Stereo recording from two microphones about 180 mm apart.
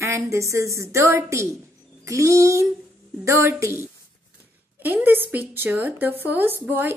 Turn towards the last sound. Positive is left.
turn(degrees=-10)  # may be behind; listen again after turning